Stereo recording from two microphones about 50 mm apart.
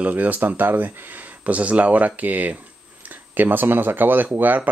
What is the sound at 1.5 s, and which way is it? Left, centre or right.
Speech, right.